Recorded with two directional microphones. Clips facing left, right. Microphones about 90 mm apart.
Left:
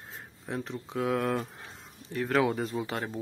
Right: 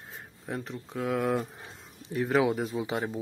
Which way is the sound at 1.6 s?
15° right (ahead or behind).